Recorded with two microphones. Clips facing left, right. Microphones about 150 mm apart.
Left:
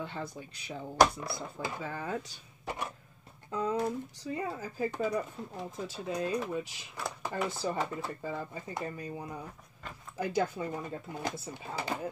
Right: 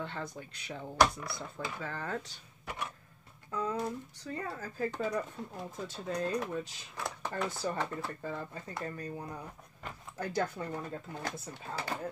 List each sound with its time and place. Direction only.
0.0 s speech: 10° left (ahead or behind)
2.6 s a sound: 30° left (ahead or behind)
3.5 s speech: 20° left (ahead or behind)